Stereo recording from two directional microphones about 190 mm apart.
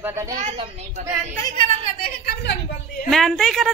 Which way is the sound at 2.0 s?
50° left (ahead or behind).